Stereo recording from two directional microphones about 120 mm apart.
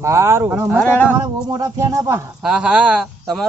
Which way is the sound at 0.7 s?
10° left (ahead or behind).